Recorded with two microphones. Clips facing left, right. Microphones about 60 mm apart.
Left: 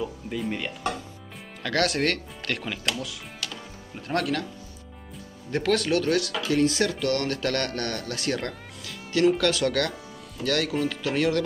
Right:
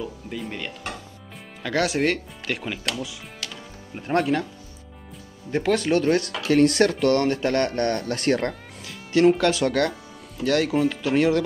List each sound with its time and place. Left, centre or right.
0.3 s speech: centre
1.6 s speech: centre
3.9 s speech: right
5.5 s speech: centre
6.4 s speech: right